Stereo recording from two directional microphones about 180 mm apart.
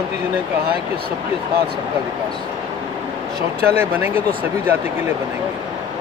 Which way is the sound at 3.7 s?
10° right (ahead or behind).